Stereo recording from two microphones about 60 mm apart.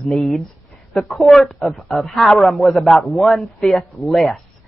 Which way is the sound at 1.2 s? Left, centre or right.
Centre.